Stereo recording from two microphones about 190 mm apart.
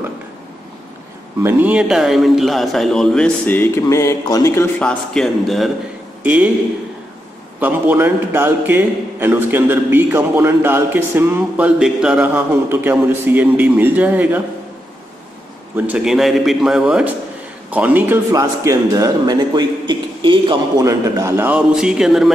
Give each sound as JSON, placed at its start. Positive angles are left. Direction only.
{"t": 1.4, "sound": "a man's voice", "side_deg": -10}
{"t": 7.6, "sound": "a man's voice", "side_deg": -10}
{"t": 15.7, "sound": "a man's voice", "side_deg": -5}